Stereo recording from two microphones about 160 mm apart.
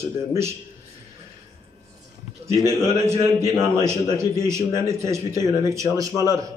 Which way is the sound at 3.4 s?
15° right (ahead or behind).